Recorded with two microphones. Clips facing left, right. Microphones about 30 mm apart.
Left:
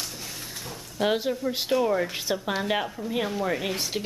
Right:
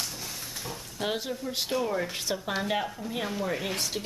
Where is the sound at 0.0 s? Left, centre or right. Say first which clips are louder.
Even; centre.